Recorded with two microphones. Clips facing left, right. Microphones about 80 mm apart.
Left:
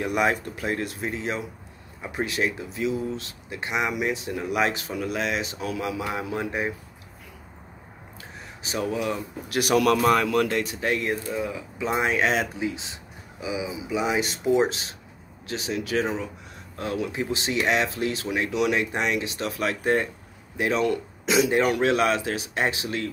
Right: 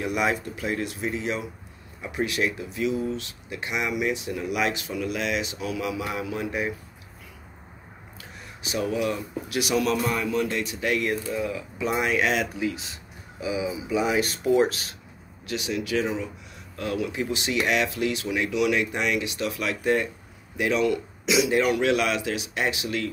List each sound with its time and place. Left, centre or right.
0.0 s speech: left
8.6 s speech: left
9.8 s speech: left
10.5 s speech: left